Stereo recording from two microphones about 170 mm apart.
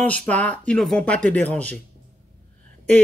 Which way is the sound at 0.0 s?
10° left (ahead or behind).